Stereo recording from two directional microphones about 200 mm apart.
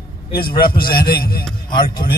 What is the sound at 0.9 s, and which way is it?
Speech, 50° left (ahead or behind).